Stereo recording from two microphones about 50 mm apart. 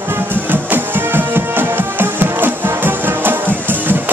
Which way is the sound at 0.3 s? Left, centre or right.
Right.